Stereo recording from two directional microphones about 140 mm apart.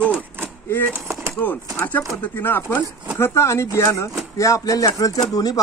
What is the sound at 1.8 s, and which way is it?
Speech, 10° left (ahead or behind).